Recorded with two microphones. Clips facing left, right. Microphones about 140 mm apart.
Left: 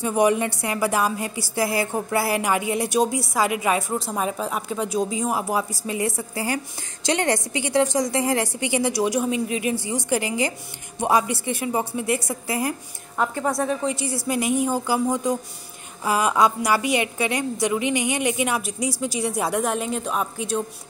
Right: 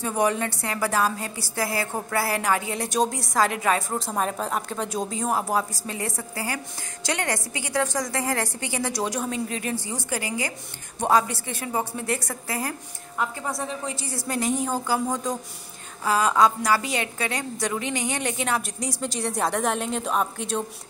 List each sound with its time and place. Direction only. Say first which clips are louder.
0.0 s a woman's voice: left 4 dB; 15° left (ahead or behind)
13.8 s a woman's voice: left 6 dB; 15° left (ahead or behind)